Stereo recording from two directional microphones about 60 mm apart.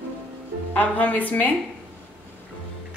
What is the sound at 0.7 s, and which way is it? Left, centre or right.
Speech, left.